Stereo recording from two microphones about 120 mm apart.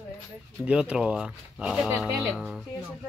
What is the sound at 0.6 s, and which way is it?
Speech, 10° right (ahead or behind).